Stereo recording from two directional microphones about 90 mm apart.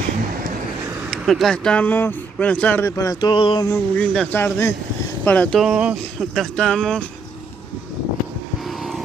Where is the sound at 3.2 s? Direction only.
60° left (ahead or behind).